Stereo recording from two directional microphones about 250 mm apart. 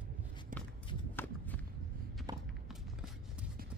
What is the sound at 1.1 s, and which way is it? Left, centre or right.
Walk, centre.